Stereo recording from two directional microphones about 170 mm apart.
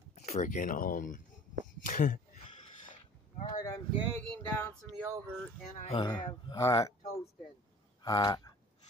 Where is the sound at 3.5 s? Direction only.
20° left (ahead or behind).